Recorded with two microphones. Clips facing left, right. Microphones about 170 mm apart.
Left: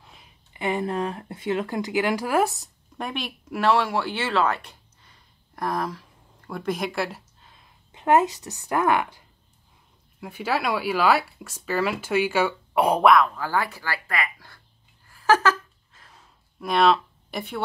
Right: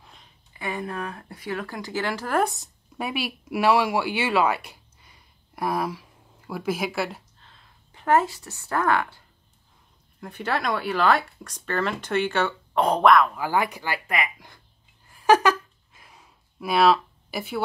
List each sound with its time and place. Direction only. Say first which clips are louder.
0.0 s a sound: even; 5° left (ahead or behind)
0.5 s speech: left 5 dB; 20° left (ahead or behind); by 7.2 s centre (ahead or behind)
7.4 s a woman's voice: left 1 dB; 15° left (ahead or behind)
10.2 s speech: left 1 dB; 5° left (ahead or behind)
13.3 s speech: right 2 dB; 15° right (ahead or behind)
15.0 s a sound: right 2 dB; 15° right (ahead or behind)